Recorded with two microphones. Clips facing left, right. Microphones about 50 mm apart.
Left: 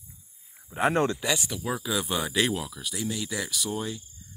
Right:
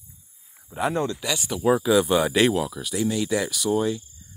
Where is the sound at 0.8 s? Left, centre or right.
Left.